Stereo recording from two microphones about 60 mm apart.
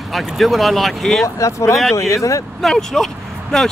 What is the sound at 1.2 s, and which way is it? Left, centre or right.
Speech, left.